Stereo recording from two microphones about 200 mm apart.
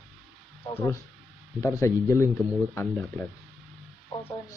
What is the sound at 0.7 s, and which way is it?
Speech, 10° left (ahead or behind).